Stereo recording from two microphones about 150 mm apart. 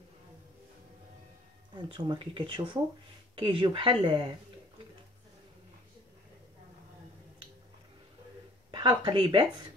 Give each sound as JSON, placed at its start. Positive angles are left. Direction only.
{"t": 1.9, "sound": "speech", "side_deg": -35}
{"t": 8.7, "sound": "speech", "side_deg": -30}